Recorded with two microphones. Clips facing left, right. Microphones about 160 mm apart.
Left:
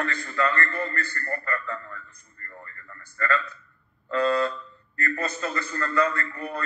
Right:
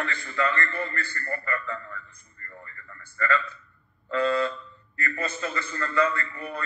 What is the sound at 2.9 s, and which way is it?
A man's voice, 40° left (ahead or behind).